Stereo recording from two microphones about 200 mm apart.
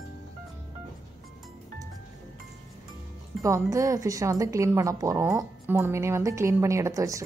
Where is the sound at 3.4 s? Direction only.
15° right (ahead or behind).